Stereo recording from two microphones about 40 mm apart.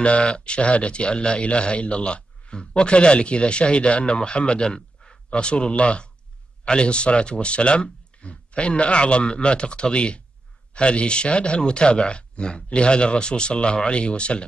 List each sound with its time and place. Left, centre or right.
0.0 s speech: left